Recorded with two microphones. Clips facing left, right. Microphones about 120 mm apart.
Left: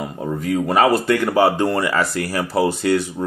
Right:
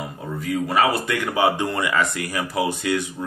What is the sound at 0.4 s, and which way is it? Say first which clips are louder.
Speech: left 3 dB; 40° left (ahead or behind).